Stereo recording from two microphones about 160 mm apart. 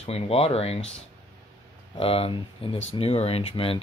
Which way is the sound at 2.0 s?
35° left (ahead or behind).